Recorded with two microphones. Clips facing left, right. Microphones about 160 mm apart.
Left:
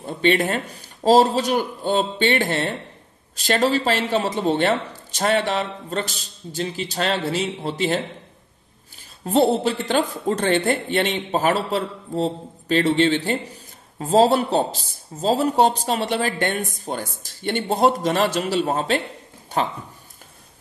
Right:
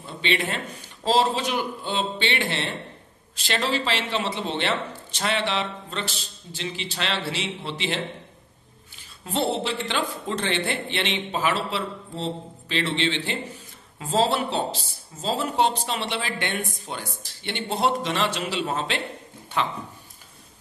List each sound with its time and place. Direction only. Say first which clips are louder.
0.0 s a man's voice: left 7 dB; 45° left (ahead or behind)